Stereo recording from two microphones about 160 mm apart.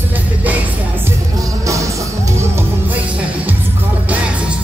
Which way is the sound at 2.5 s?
10° right (ahead or behind).